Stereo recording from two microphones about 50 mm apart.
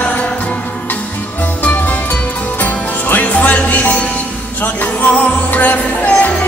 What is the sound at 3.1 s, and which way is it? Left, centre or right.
Music, left.